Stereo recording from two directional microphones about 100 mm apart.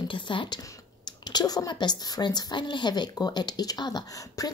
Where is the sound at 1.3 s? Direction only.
40° left (ahead or behind).